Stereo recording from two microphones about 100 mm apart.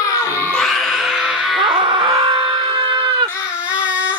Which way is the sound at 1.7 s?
55° right (ahead or behind).